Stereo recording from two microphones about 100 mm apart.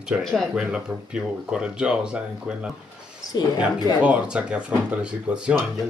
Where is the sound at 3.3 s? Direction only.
40° left (ahead or behind).